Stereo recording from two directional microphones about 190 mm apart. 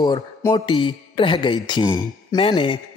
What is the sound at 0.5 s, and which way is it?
Speech, 25° left (ahead or behind).